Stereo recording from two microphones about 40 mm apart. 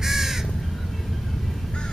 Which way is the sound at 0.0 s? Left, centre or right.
Centre.